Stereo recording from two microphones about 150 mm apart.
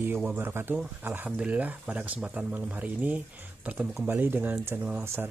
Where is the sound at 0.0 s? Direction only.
10° right (ahead or behind).